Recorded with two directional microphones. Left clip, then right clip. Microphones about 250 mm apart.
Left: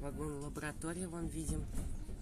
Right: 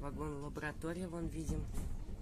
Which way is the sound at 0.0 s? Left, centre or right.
Centre.